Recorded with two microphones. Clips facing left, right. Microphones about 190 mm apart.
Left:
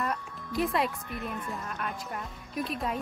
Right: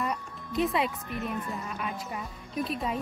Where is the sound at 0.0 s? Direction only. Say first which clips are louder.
Even; centre (ahead or behind).